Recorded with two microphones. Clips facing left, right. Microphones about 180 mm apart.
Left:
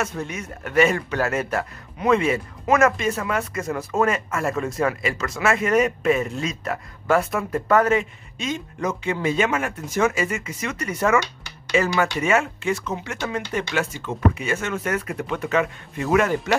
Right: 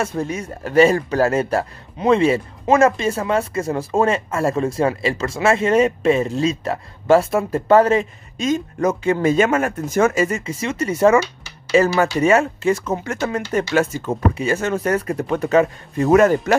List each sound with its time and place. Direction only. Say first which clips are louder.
0.0 s a man's voice: right 5 dB; 30° right (ahead or behind)